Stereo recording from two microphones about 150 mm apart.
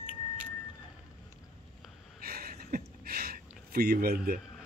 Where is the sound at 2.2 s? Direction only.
90° right.